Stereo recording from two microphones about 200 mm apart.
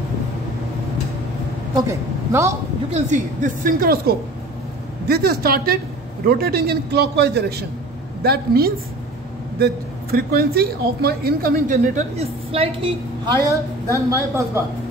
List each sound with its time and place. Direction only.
1.8 s a woman's voice: 15° right (ahead or behind)
2.9 s a woman's voice: 40° right (ahead or behind)
10.1 s a woman's voice: 50° right (ahead or behind); by 13.3 s 25° right (ahead or behind)
13.5 s a woman's voice: 15° right (ahead or behind)